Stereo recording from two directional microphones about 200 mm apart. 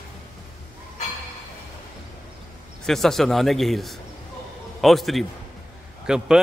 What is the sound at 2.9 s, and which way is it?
A man's voice, centre (ahead or behind).